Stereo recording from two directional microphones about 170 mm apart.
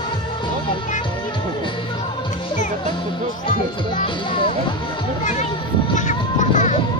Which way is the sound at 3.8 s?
30° left (ahead or behind).